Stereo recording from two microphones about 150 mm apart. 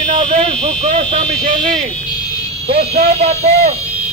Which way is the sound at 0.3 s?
40° right (ahead or behind).